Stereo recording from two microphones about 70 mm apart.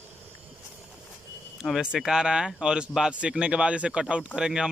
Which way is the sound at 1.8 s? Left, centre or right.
Centre.